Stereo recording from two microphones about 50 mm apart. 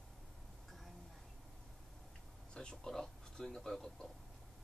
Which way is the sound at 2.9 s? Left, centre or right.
Centre.